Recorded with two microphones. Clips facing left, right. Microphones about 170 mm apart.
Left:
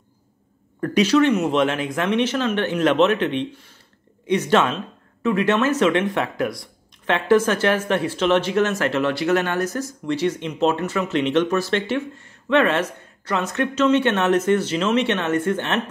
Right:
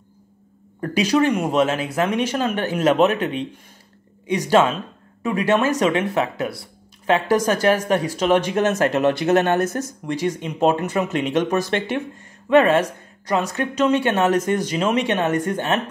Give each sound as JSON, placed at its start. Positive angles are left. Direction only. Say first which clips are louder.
{"t": 0.9, "sound": "speech", "louder": "left 2 dB", "side_deg": -10}
{"t": 4.3, "sound": "speech", "louder": "right 1 dB", "side_deg": -10}